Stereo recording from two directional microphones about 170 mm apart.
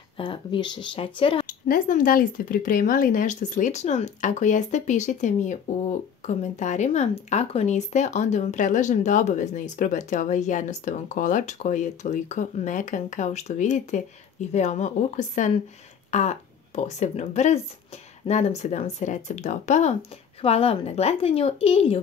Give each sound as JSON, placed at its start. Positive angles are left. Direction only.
{"t": 0.2, "sound": "speech", "side_deg": 30}
{"t": 1.5, "sound": "speech", "side_deg": 50}